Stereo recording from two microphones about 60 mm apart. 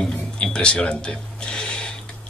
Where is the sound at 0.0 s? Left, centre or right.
Centre.